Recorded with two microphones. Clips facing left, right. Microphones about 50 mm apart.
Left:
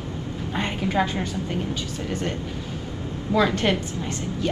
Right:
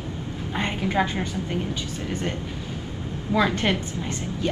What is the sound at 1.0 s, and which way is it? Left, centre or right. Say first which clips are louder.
Speech: left 1 dB; right.